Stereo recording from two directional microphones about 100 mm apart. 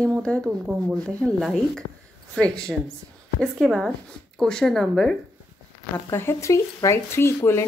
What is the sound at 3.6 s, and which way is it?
Speech, centre (ahead or behind).